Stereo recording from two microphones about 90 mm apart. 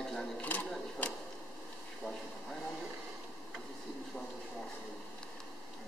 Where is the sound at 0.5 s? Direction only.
20° left (ahead or behind).